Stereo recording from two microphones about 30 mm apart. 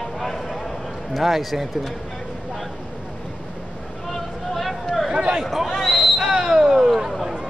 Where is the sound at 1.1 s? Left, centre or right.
Centre.